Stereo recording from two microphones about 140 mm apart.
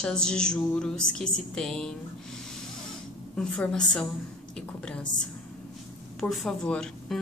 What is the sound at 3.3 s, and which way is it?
A woman's voice, 10° left (ahead or behind).